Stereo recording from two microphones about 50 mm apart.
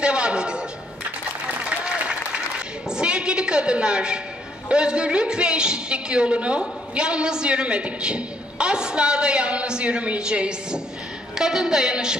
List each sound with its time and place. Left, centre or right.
0.0 s a man's voice: right
1.6 s applause: right
2.9 s a sound: centre
4.6 s a woman's voice: centre